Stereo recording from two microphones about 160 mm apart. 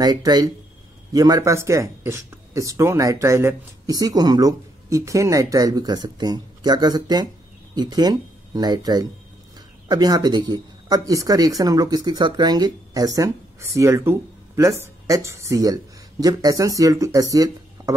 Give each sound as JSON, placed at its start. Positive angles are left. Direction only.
{"t": 0.0, "sound": "speech", "side_deg": -25}